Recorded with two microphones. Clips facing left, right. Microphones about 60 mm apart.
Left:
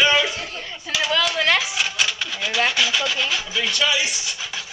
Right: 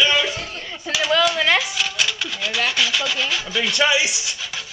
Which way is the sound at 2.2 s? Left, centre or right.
Centre.